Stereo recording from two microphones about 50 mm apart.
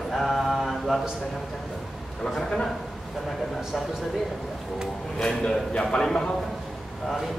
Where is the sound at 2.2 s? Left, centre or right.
Centre.